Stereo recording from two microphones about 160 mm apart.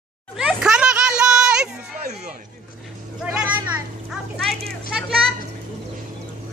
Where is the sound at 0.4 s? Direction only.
5° right (ahead or behind).